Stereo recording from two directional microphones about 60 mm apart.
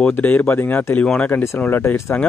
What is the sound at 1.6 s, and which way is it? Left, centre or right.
Speech, left.